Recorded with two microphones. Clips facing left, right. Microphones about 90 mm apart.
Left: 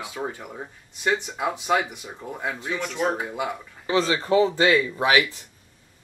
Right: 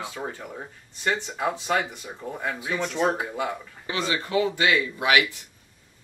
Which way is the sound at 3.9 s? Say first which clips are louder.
Left 6 dB; 30° left (ahead or behind).